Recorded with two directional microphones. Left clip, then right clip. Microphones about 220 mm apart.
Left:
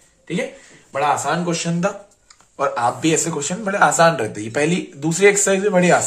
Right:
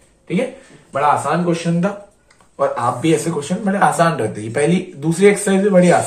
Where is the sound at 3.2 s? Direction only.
45° left (ahead or behind).